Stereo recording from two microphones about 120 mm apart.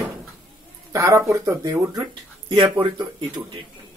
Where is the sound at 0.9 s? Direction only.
25° right (ahead or behind); by 3.3 s 45° right (ahead or behind).